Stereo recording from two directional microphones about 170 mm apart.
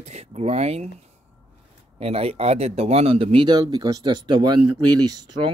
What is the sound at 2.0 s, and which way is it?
Speech, 35° right (ahead or behind).